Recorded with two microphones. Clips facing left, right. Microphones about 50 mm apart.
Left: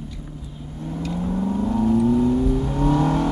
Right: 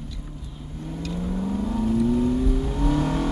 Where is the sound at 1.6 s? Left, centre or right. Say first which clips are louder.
Left 4 dB; left.